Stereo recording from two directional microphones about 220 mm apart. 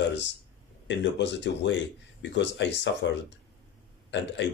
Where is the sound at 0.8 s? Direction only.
55° left (ahead or behind).